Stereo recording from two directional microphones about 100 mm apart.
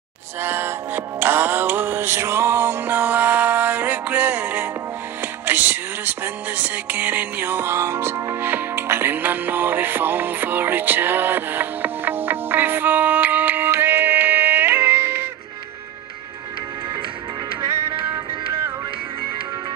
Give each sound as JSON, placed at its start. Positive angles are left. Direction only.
{"t": 0.4, "sound": "music", "side_deg": -20}